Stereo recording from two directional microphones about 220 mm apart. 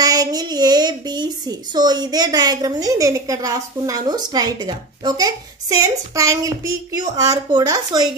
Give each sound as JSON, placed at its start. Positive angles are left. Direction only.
{"t": 0.0, "sound": "speech", "side_deg": -15}